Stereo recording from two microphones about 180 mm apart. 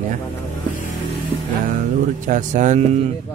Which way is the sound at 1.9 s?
45° right (ahead or behind).